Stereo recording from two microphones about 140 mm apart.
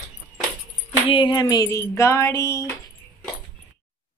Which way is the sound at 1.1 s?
30° left (ahead or behind).